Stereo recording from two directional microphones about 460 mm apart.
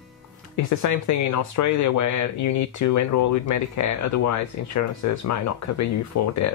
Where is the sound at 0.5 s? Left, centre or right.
Left.